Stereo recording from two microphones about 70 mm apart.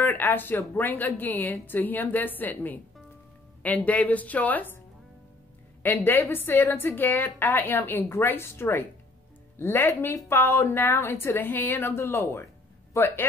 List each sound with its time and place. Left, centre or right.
0.0 s a woman's voice: left
5.8 s a woman's voice: left